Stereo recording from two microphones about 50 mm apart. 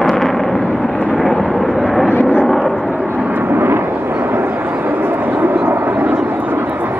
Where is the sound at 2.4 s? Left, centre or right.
Centre.